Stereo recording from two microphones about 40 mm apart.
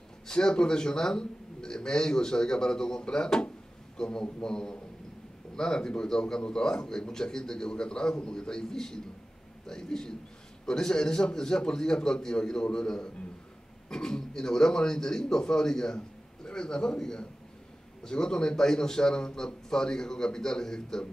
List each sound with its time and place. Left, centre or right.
0.3 s a man's voice: left